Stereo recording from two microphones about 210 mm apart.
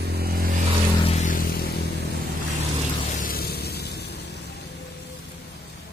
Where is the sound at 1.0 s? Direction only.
30° left (ahead or behind).